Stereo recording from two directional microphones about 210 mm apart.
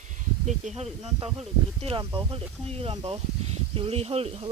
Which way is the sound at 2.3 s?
30° right (ahead or behind).